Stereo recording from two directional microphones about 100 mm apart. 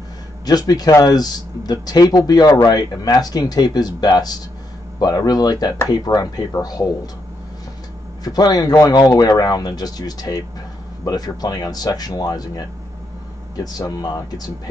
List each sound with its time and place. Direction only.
0.5 s speech: 40° left (ahead or behind)
8.2 s speech: 40° left (ahead or behind)